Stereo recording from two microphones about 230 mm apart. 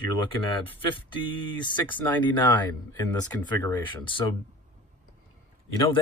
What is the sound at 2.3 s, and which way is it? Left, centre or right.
Speech, centre.